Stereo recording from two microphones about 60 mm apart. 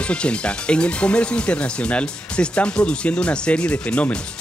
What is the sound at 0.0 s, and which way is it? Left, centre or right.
Speech, centre.